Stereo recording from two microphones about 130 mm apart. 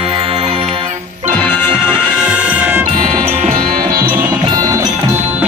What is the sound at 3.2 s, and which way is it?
Music, 50° right (ahead or behind).